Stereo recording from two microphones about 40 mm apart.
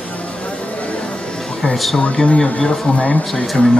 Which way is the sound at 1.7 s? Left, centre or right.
Centre.